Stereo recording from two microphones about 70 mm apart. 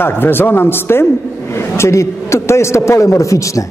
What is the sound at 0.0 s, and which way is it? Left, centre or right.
A man's voice, left.